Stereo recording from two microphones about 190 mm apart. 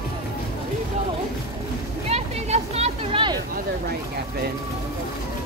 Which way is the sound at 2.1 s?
35° right (ahead or behind).